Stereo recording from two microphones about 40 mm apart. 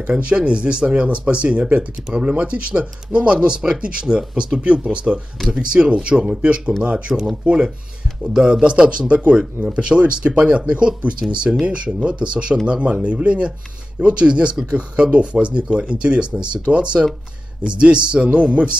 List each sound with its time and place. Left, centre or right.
0.5 s speech: right